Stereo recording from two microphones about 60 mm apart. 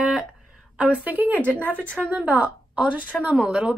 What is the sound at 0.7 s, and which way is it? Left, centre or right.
A woman's voice, right.